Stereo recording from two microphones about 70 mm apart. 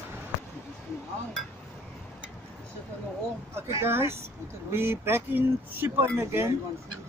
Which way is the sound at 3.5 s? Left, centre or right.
Right.